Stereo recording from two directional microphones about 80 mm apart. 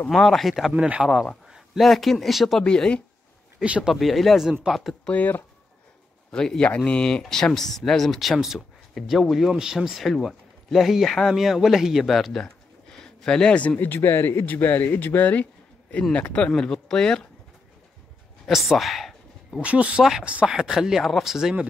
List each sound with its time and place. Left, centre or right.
0.1 s speech: centre
2.6 s speech: centre
3.6 s speech: centre
3.9 s speech: centre
5.0 s speech: centre
6.3 s speech: centre
18.5 s a sound: centre
19.6 s speech: centre